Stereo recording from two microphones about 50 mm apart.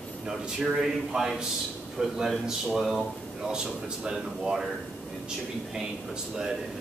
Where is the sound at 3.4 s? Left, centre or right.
Centre.